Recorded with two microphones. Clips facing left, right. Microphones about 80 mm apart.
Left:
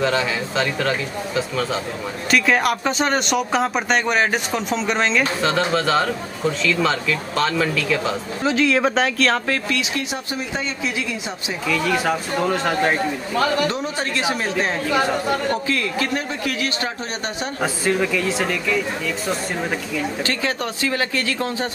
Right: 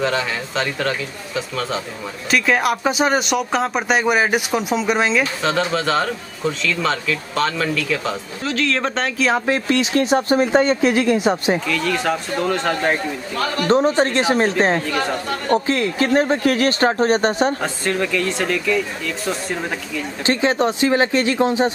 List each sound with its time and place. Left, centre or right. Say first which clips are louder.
0.0 s speech: left 1 dB; centre
8.5 s speech: left 3 dB; centre
9.5 s speech: right 5 dB; right
9.9 s speech: right 10 dB; right
11.6 s speech: even; centre
13.7 s speech: right 9 dB; right
14.9 s speech: left 2 dB; centre
15.5 s speech: right 4 dB; right
17.6 s speech: left 1 dB; centre
20.2 s speech: right 6 dB; right